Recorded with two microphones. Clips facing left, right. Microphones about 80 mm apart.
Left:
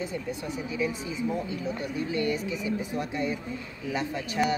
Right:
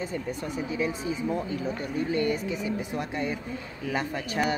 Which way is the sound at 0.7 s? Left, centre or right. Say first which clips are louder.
Even; right.